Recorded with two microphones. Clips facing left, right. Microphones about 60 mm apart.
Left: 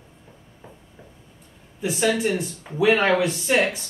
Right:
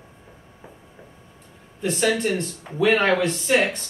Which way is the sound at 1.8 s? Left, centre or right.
Centre.